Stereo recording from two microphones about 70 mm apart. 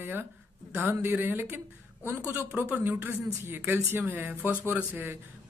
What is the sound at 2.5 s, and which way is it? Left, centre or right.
Speech, centre.